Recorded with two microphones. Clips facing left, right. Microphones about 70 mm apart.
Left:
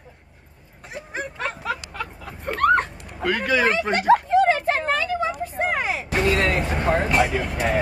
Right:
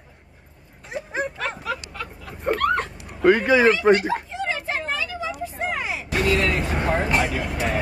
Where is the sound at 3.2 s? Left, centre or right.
Right.